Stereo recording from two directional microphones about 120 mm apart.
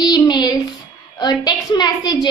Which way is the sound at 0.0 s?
35° left (ahead or behind).